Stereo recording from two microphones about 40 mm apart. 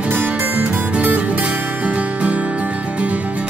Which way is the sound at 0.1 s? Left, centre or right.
Right.